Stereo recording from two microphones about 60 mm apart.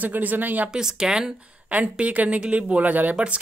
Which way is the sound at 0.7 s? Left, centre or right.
Centre.